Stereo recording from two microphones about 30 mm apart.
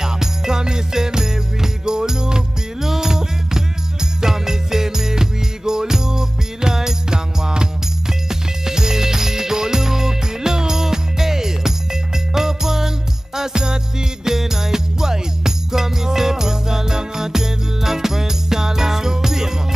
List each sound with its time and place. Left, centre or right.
0.0 s music: centre